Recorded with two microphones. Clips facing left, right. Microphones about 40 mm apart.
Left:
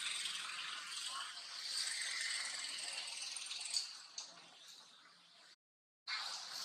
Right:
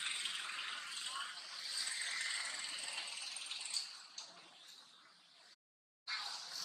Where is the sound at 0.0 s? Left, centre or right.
Centre.